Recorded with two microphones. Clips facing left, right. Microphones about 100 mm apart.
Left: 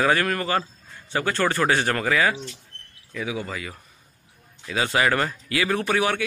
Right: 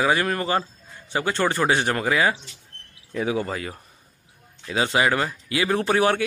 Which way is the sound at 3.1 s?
35° right (ahead or behind).